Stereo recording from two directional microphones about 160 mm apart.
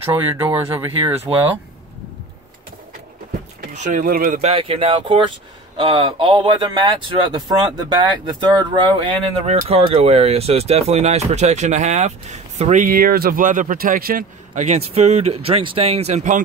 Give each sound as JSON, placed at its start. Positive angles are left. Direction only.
{"t": 0.5, "sound": "speech", "side_deg": -10}
{"t": 3.6, "sound": "speech", "side_deg": -50}
{"t": 4.4, "sound": "speech", "side_deg": -35}